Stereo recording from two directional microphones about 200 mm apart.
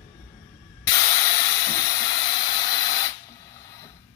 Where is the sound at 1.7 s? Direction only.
20° left (ahead or behind).